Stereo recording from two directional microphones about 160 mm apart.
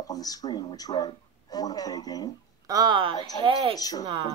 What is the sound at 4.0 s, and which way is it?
Speech, 30° right (ahead or behind).